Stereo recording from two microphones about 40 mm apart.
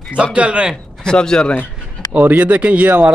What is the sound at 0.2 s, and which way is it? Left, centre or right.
Speech, right.